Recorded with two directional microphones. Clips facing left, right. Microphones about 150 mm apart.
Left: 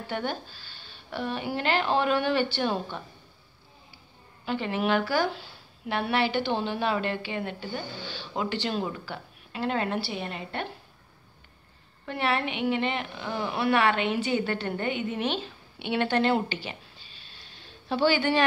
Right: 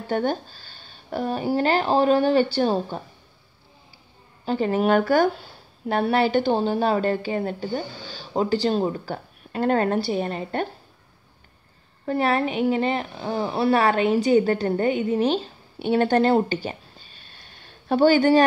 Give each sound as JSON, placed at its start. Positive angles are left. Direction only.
{"t": 0.1, "sound": "a woman's voice", "side_deg": -40}
{"t": 4.5, "sound": "a woman's voice", "side_deg": -40}
{"t": 12.1, "sound": "speech", "side_deg": -40}